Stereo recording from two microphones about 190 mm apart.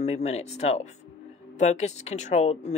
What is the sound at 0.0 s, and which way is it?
Speech, 35° left (ahead or behind).